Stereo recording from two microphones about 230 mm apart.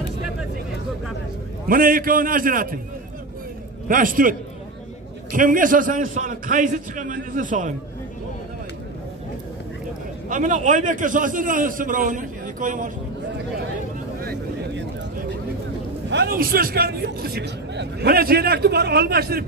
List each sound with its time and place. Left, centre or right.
1.7 s a man's voice: right
3.9 s a man's voice: right
10.3 s a man's voice: right
14.2 s a sound: right
16.1 s a man's voice: right